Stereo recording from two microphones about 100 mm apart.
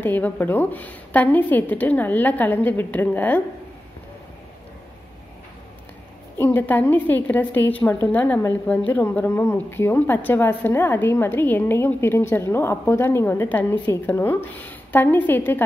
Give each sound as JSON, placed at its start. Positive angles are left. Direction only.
{"t": 0.0, "sound": "speech", "side_deg": 20}
{"t": 6.3, "sound": "a woman's voice", "side_deg": 20}